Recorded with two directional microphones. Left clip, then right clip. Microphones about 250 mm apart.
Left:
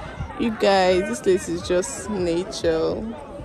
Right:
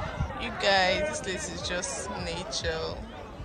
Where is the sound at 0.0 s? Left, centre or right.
Centre.